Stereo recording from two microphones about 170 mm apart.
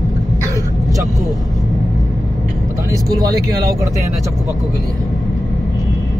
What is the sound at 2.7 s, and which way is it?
Speech, 20° right (ahead or behind).